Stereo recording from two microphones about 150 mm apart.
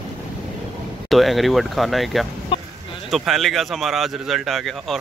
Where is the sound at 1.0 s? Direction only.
Centre (ahead or behind).